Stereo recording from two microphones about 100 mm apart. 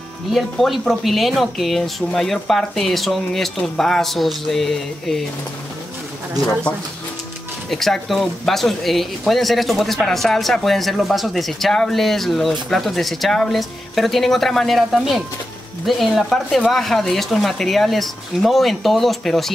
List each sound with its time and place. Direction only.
0.3 s speech: centre (ahead or behind)
7.7 s speech: 5° left (ahead or behind)